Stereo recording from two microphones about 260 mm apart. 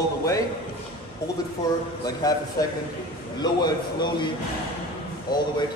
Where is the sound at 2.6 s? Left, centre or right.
Centre.